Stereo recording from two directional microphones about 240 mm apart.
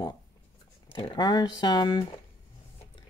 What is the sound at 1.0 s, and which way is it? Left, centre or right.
Speech, centre.